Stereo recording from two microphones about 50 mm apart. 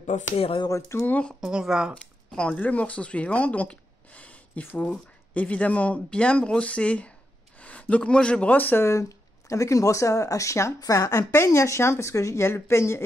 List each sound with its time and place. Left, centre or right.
0.7 s speech: left
1.4 s speech: centre
2.3 s a man's voice: left
8.5 s speech: left
8.7 s speech: left
9.5 s speech: left